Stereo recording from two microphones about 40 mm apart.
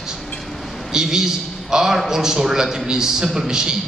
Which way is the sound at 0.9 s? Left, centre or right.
Centre.